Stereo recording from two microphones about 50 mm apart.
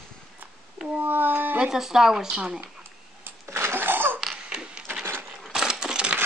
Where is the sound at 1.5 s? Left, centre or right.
Centre.